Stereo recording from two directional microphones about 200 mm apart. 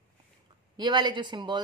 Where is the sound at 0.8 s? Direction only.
20° right (ahead or behind).